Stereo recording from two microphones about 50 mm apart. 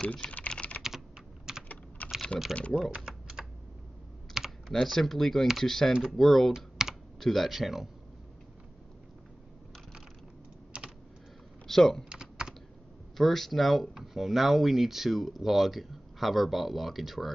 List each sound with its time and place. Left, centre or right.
0.0 s speech: left
0.5 s typing: left
0.8 s computer keyboard: centre
2.0 s typing: left
2.9 s typing: centre
4.3 s speech: centre
6.5 s computer keyboard: centre
7.2 s speech: centre
11.6 s speech: centre
12.0 s typing: centre
13.2 s speech: centre